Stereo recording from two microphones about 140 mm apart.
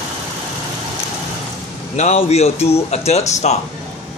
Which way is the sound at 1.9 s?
50° left (ahead or behind).